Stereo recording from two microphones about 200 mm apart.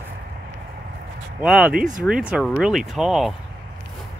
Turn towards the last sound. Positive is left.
turn(degrees=0)  # may be behind; listen again after turning